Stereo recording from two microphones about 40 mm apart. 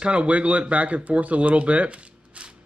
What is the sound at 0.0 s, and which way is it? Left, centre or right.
Speech, right.